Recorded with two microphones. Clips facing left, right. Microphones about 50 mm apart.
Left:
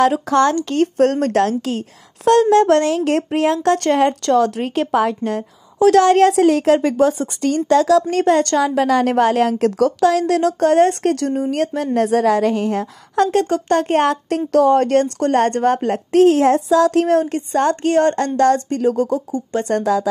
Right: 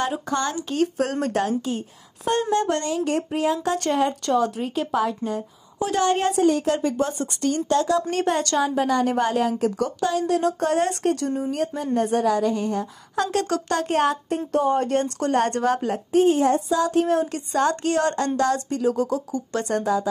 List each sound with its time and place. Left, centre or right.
0.0 s a woman's voice: left
0.7 s speech: left
1.4 s a woman's voice: left
8.1 s speech: left
8.5 s a woman's voice: left
11.5 s a woman's voice: left
13.1 s speech: left
14.5 s speech: left
16.1 s speech: left
17.0 s speech: left
17.3 s speech: left
19.7 s a woman's voice: left